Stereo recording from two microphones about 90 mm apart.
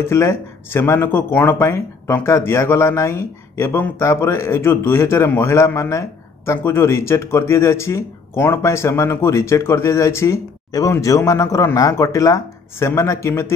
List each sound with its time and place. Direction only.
0.0 s speech: 30° left (ahead or behind)